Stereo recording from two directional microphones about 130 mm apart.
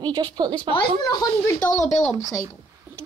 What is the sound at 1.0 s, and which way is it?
Speech, 30° left (ahead or behind).